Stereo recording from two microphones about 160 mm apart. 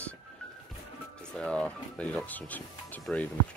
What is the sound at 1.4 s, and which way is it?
Speech, 5° left (ahead or behind).